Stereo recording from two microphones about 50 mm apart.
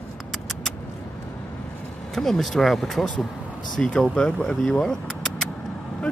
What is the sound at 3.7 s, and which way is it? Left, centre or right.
Speech, centre.